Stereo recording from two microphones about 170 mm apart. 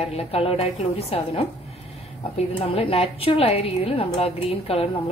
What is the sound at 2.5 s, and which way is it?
A woman's voice, 35° left (ahead or behind).